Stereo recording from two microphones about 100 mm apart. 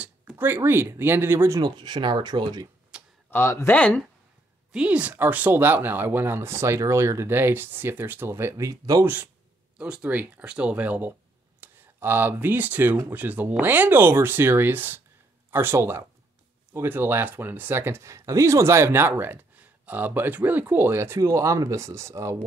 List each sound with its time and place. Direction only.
0.4 s speech: 25° right (ahead or behind)
1.6 s speech: 50° right (ahead or behind)
2.9 s tick-tock: 10° right (ahead or behind)
3.3 s speech: 25° left (ahead or behind)
3.7 s speech: 15° left (ahead or behind)
4.7 s speech: 10° right (ahead or behind); by 9.0 s 35° right (ahead or behind)
9.0 s speech: 20° right (ahead or behind)